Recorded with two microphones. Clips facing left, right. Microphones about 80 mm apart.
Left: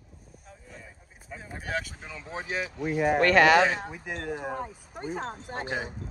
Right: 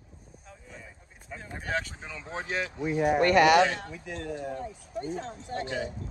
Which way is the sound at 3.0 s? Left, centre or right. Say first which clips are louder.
Left 1 dB; left.